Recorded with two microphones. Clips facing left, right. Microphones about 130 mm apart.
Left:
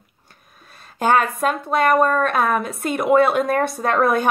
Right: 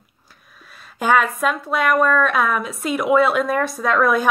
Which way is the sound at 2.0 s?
45° left (ahead or behind).